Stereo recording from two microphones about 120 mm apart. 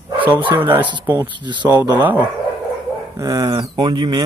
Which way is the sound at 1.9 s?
15° right (ahead or behind).